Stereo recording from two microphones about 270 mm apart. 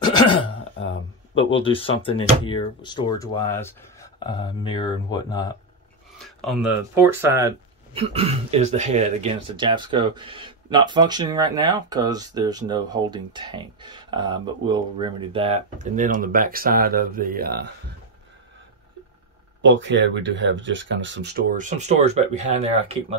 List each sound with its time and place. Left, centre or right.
0.0 s throat clearing: centre
1.3 s speech: centre
6.1 s a sound: centre
6.8 s speech: centre
8.0 s speech: right
19.6 s speech: right